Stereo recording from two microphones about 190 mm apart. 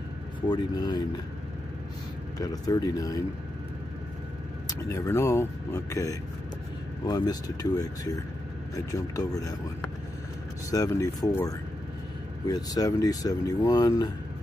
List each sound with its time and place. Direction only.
0.5 s speech: 20° left (ahead or behind)
2.3 s speech: 20° left (ahead or behind)
4.6 s speech: 15° left (ahead or behind)
10.7 s speech: 15° left (ahead or behind)